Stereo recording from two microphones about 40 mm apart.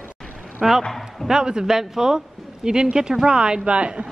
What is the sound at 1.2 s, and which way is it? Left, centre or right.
A woman's voice, centre.